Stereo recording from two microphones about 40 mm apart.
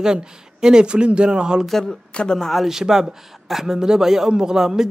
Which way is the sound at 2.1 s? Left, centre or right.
Centre.